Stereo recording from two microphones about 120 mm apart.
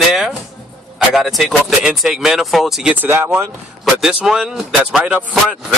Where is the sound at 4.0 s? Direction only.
5° right (ahead or behind).